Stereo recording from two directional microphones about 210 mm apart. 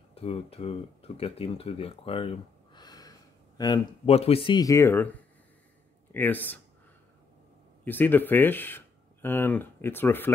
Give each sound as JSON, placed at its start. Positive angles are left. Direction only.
{"t": 0.1, "sound": "speech", "side_deg": 30}
{"t": 6.1, "sound": "speech", "side_deg": 10}
{"t": 7.8, "sound": "speech", "side_deg": 10}